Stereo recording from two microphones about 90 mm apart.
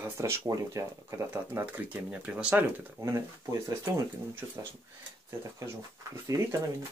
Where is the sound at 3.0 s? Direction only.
35° right (ahead or behind).